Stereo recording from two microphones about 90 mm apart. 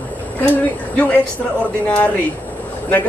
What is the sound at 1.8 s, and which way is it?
Speech, 20° left (ahead or behind).